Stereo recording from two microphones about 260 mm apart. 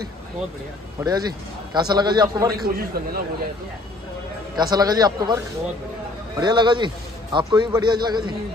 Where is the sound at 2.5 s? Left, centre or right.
Right.